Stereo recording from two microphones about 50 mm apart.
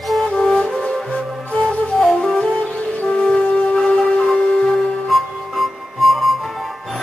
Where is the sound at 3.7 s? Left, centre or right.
Centre.